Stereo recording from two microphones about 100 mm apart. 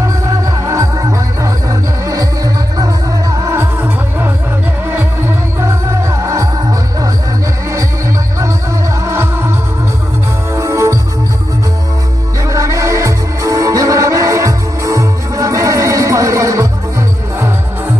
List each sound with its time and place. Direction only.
0.7 s music: 35° right (ahead or behind)
4.8 s music: 25° right (ahead or behind)
9.0 s music: 25° right (ahead or behind)
10.5 s music: 30° right (ahead or behind)
12.4 s music: 35° right (ahead or behind)